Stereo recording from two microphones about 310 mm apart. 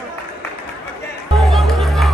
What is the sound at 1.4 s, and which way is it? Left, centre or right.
Music, centre.